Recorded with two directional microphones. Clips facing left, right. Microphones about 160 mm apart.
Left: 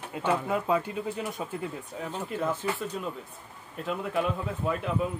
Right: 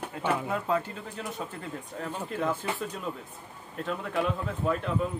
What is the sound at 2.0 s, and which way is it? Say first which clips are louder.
Speech: even; 5° left (ahead or behind).